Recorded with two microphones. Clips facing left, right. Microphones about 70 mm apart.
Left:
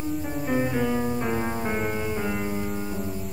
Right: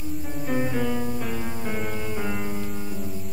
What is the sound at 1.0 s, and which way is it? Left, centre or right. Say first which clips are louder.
Music: left 3 dB; left.